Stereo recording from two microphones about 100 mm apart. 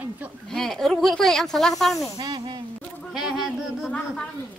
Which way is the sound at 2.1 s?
35° right (ahead or behind).